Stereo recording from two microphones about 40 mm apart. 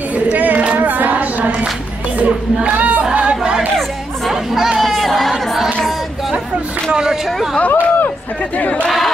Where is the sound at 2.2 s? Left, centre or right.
Right.